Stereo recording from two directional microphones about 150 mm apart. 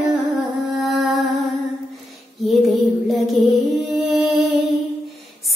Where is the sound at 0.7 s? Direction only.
Centre (ahead or behind).